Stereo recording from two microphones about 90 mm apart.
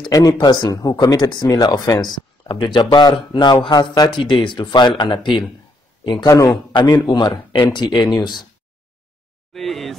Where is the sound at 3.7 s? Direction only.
45° left (ahead or behind).